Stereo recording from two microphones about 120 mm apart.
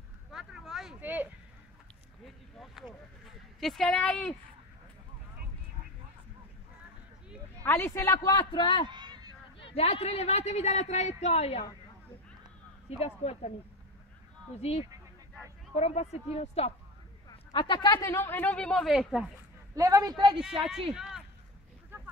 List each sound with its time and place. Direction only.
0.3 s vehicle: 5° right (ahead or behind)
1.0 s a sound: 15° right (ahead or behind)
3.5 s speech: 5° left (ahead or behind)
7.6 s a man's voice: 20° left (ahead or behind); by 8.8 s 45° left (ahead or behind)
8.8 s a sound: 40° right (ahead or behind)
9.6 s a woman's voice: 55° left (ahead or behind)
13.0 s a woman's voice: 60° left (ahead or behind)
14.6 s a woman's voice: 60° left (ahead or behind)
17.5 s a man's voice: 40° left (ahead or behind)
18.1 s speech: 20° left (ahead or behind)
18.9 s speech: 5° right (ahead or behind)
19.7 s speech: 30° right (ahead or behind)
20.9 s speech: 5° right (ahead or behind)